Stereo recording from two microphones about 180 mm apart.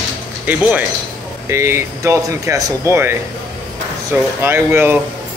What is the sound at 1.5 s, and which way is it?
A man's voice, 15° right (ahead or behind).